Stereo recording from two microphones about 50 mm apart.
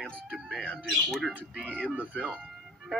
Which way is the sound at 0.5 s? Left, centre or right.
Left.